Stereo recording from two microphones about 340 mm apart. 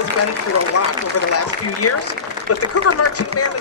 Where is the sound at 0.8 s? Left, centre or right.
Left.